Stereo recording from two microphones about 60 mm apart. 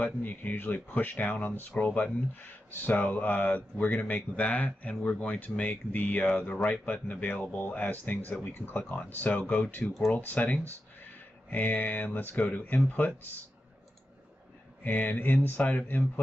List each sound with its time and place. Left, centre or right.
0.0 s speech: left
2.7 s speech: left
14.8 s speech: left